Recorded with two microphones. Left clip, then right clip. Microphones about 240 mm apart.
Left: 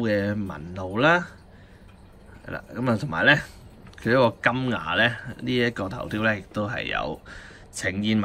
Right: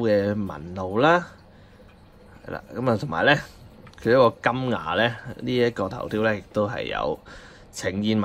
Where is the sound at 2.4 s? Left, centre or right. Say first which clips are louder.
Right 2 dB; centre.